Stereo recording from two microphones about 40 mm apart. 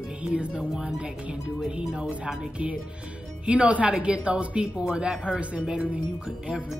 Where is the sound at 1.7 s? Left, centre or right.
Right.